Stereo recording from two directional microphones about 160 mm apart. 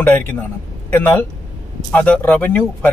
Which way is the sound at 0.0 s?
15° left (ahead or behind).